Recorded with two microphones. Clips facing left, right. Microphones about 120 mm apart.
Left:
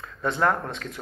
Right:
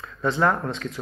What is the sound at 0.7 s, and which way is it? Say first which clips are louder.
Speech: right 4 dB; 55° left (ahead or behind).